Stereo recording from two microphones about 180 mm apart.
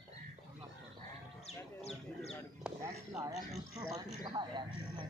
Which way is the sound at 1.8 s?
35° left (ahead or behind).